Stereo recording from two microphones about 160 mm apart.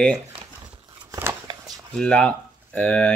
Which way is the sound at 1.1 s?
15° right (ahead or behind).